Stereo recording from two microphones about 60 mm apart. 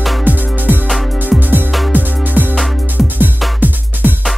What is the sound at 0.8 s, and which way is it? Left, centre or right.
Music, centre.